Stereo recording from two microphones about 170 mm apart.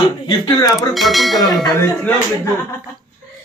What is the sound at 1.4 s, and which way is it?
Speech, 20° left (ahead or behind).